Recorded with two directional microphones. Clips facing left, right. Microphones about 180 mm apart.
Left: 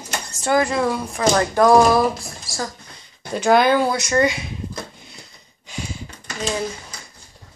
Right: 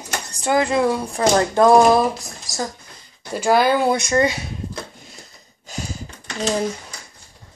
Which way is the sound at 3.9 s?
25° right (ahead or behind).